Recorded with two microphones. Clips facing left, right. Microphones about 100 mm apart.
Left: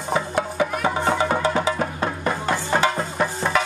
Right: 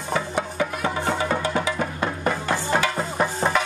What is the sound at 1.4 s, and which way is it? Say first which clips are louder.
Music: left 3 dB; 30° left (ahead or behind).